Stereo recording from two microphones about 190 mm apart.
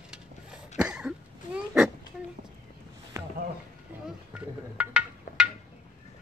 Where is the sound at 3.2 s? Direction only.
15° right (ahead or behind).